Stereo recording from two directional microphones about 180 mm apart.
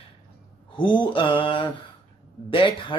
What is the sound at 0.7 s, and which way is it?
A man's voice, 25° left (ahead or behind).